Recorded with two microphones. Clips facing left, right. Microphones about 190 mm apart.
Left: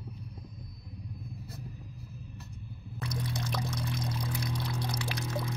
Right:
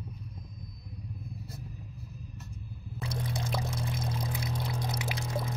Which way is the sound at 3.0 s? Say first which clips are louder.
Right 1 dB; 25° right (ahead or behind).